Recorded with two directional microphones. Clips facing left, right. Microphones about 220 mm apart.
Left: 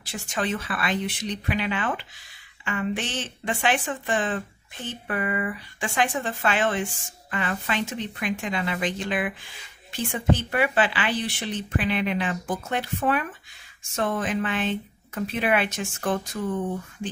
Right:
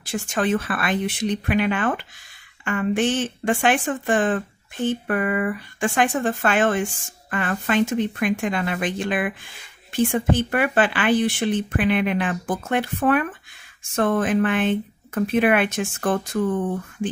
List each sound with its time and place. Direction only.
0.0 s speech: 50° right (ahead or behind)